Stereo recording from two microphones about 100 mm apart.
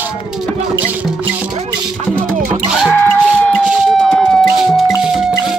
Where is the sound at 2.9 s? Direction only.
15° left (ahead or behind).